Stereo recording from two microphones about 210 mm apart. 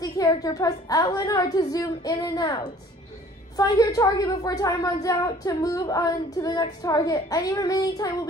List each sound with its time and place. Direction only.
0.0 s a woman's voice: 20° left (ahead or behind)